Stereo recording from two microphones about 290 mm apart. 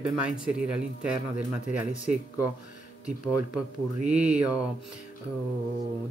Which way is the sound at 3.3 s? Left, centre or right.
Right.